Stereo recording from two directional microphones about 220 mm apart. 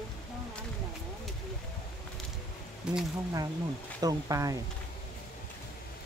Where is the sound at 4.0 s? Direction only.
15° right (ahead or behind).